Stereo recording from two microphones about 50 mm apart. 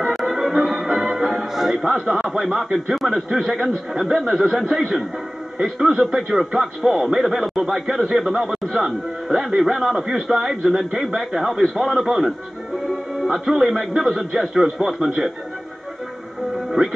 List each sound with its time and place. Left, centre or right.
0.0 s music: centre
1.5 s a man's voice: centre